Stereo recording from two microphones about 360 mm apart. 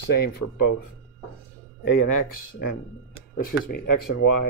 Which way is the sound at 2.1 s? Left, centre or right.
Left.